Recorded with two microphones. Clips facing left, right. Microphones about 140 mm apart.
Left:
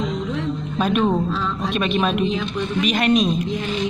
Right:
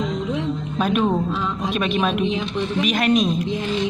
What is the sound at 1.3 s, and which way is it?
Speech, 15° right (ahead or behind).